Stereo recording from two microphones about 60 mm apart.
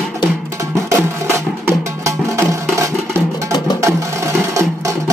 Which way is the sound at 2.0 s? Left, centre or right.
Right.